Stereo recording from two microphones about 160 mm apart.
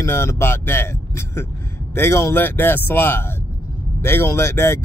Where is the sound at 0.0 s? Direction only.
15° left (ahead or behind).